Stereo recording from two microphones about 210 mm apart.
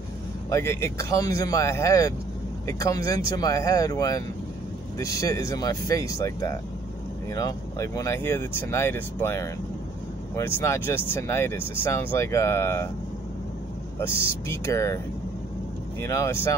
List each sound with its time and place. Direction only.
0.5 s speech: 15° left (ahead or behind)
14.5 s speech: 15° left (ahead or behind)
16.0 s speech: 10° left (ahead or behind)